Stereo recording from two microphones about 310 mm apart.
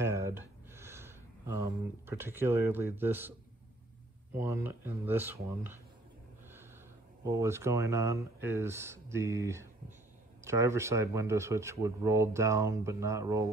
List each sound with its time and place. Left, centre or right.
0.0 s speech: centre
7.2 s speech: centre